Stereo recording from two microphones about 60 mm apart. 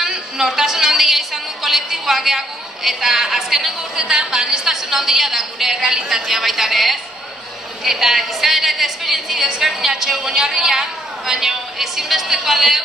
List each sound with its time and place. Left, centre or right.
0.0 s a woman's voice: centre